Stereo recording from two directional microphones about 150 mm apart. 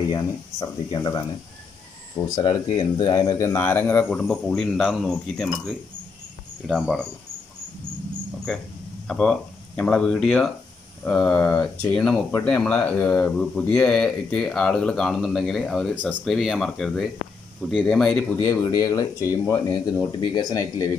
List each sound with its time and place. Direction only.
0.1 s speech: 25° left (ahead or behind)
2.2 s speech: 30° left (ahead or behind); by 6.8 s 5° right (ahead or behind)
8.5 s speech: 5° left (ahead or behind)
18.4 s speech: 20° left (ahead or behind)